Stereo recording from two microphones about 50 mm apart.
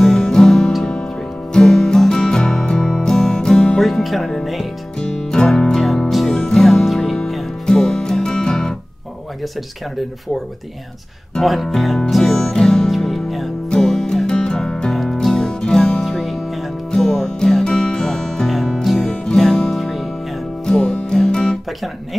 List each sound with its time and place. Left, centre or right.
0.2 s music: centre
3.8 s music: centre
4.9 s music: centre
6.0 s music: centre
7.6 s music: centre
11.4 s speech: centre
12.1 s music: centre
13.7 s music: centre
20.6 s music: centre
21.3 s guitar: centre